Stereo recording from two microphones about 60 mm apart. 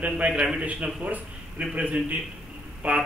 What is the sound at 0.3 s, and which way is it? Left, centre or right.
Speech, centre.